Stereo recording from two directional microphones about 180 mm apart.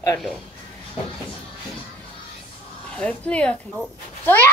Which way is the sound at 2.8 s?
5° left (ahead or behind).